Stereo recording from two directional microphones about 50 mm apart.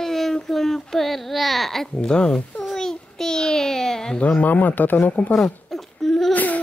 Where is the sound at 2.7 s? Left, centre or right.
Centre.